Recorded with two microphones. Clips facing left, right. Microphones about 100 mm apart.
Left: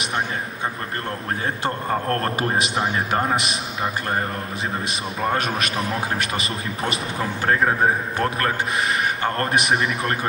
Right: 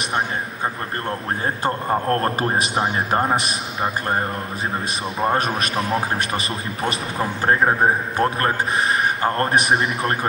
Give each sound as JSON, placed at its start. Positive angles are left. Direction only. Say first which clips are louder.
{"t": 1.6, "sound": "a man's voice", "louder": "right 2 dB", "side_deg": -30}
{"t": 5.2, "sound": "a man's voice", "louder": "right 2 dB", "side_deg": -35}